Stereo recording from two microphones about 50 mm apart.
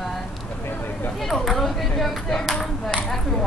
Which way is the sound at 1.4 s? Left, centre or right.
Centre.